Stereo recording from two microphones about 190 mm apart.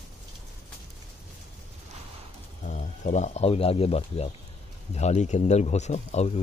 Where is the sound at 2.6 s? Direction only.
40° left (ahead or behind).